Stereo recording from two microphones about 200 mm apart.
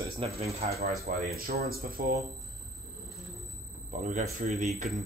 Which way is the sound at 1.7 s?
45° right (ahead or behind).